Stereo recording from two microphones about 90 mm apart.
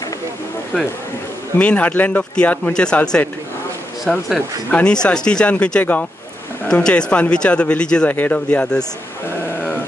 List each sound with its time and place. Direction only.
0.7 s speech: 15° left (ahead or behind)
4.0 s speech: centre (ahead or behind)
4.6 s speech: 15° left (ahead or behind)